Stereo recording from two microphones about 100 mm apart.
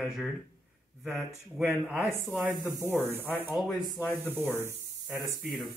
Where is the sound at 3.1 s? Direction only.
20° right (ahead or behind).